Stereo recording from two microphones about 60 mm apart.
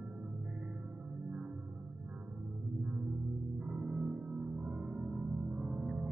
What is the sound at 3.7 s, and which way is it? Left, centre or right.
Music, centre.